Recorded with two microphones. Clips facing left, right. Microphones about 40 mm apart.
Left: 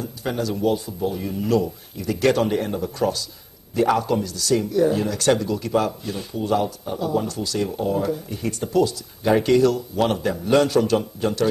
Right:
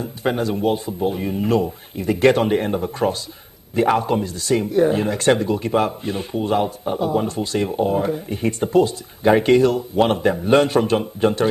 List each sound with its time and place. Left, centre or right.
0.0 s speech: right